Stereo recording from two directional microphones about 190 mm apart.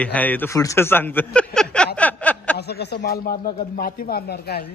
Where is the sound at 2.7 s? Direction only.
60° left (ahead or behind).